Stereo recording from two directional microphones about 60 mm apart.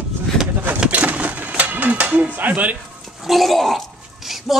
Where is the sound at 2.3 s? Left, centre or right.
Right.